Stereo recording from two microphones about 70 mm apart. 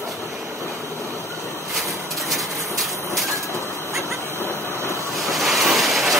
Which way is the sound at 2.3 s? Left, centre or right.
Centre.